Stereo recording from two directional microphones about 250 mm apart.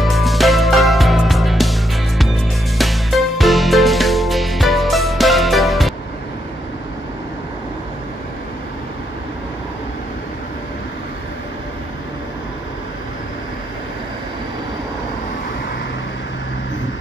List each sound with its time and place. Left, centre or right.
0.0 s music: centre